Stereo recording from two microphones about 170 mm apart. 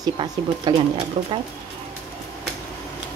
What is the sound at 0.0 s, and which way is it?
Speech, 25° right (ahead or behind).